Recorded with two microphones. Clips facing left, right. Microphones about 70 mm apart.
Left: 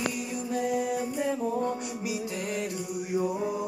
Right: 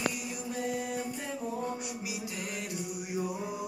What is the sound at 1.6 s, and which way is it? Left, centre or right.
Music, centre.